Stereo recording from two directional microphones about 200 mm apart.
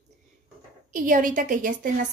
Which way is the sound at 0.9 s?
40° right (ahead or behind).